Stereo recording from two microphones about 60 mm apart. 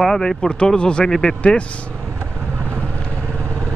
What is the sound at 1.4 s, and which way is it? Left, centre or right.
Speech, left.